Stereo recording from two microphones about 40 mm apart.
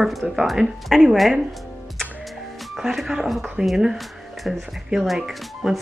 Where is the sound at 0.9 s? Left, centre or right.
Centre.